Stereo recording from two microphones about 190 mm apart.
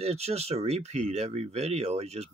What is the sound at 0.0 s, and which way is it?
Speech, 35° right (ahead or behind).